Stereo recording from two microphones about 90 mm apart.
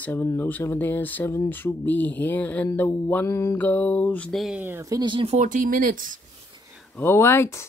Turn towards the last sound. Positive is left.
turn(degrees=30)  # may be behind; listen again after turning